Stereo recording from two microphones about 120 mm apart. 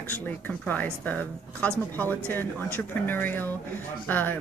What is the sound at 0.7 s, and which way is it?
Speech, 15° left (ahead or behind).